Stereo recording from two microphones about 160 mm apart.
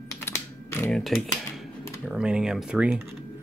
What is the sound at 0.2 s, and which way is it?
Computer keyboard, 15° left (ahead or behind).